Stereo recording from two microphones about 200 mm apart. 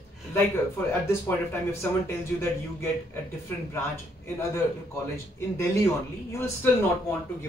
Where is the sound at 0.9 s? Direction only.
15° left (ahead or behind).